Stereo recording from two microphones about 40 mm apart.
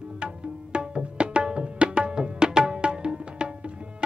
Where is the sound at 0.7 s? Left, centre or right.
Right.